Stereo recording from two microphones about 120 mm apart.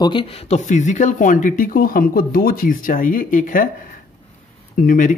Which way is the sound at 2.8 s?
90° left.